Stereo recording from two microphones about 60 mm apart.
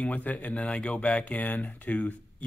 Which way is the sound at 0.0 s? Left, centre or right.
Left.